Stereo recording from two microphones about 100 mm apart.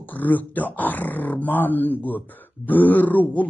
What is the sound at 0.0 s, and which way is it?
Speech, 15° left (ahead or behind).